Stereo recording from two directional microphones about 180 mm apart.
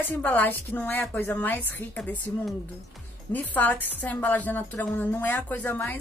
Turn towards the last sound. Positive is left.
turn(degrees=10)  # may be behind; listen again after turning